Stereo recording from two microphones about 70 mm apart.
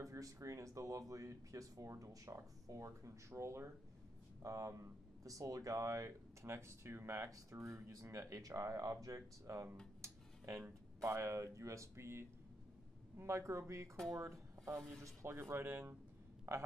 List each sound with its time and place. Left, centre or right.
0.0 s speech: right
4.4 s speech: right
15.5 s speech: right
16.5 s speech: right